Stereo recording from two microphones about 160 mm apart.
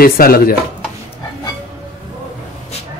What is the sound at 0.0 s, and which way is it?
Speech, 65° left (ahead or behind).